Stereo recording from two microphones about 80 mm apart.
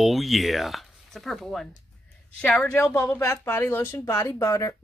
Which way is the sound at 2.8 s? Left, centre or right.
Left.